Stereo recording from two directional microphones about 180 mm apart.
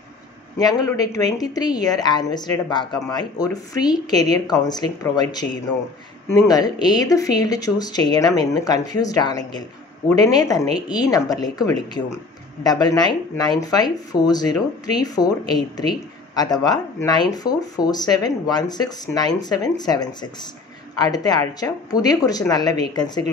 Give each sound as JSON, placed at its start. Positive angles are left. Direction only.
{"t": 0.6, "sound": "speech", "side_deg": 20}